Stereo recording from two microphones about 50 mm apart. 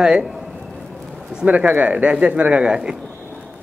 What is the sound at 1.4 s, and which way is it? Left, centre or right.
Speech, right.